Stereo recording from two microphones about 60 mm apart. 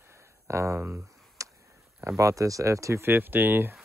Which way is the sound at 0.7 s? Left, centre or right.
Right.